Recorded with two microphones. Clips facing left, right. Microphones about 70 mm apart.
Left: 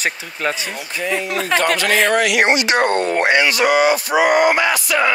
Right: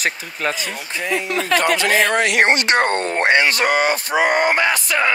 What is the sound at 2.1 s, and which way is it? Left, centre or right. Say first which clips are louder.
Speech: left 1 dB; right.